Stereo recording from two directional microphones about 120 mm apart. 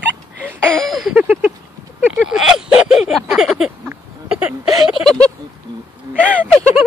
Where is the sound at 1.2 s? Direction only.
10° right (ahead or behind).